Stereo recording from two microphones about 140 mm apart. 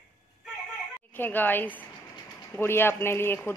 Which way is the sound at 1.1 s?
15° left (ahead or behind).